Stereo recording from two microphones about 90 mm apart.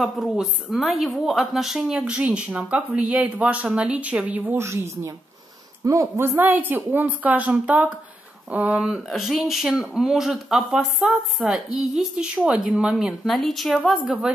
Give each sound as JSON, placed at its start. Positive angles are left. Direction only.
{"t": 0.0, "sound": "a woman's voice", "side_deg": 0}
{"t": 4.6, "sound": "a woman's voice", "side_deg": -30}
{"t": 14.0, "sound": "a woman's voice", "side_deg": -10}